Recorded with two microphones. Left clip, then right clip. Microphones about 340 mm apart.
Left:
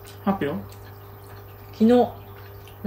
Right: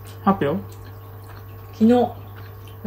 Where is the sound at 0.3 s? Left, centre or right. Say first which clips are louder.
Right 6 dB; centre.